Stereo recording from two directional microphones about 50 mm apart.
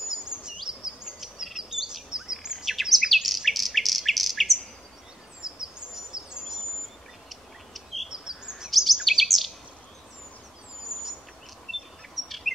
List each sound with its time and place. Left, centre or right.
0.1 s bird vocalization: centre
2.0 s chirp: centre
5.4 s bird: centre
7.2 s bird: centre
8.1 s bird vocalization: centre
8.6 s chirp: centre
10.8 s bird: centre
12.5 s chirp: centre